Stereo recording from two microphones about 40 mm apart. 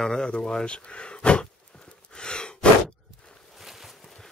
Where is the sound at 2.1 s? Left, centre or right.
Left.